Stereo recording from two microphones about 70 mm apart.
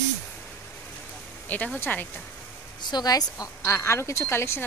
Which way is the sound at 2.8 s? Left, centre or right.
Left.